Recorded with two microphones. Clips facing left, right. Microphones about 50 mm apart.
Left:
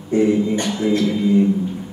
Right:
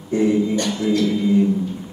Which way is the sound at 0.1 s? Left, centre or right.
Left.